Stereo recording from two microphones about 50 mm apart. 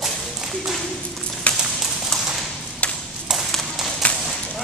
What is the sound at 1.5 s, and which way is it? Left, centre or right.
Clip-clop, left.